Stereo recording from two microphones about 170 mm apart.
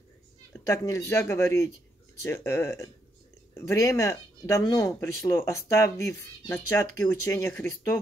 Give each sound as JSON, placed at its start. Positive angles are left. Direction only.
{"t": 0.5, "sound": "speech", "side_deg": 15}